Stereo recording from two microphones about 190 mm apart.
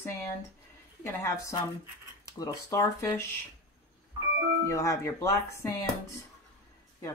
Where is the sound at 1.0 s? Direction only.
15° left (ahead or behind).